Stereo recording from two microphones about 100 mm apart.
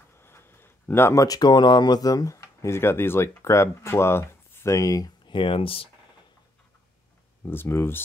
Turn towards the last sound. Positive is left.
turn(degrees=25)  # may be behind; listen again after turning